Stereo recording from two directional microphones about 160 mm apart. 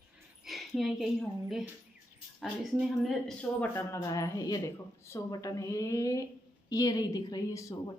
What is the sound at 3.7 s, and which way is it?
Speech, 15° left (ahead or behind).